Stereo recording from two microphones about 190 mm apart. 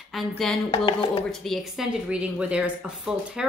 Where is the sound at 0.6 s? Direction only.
30° left (ahead or behind).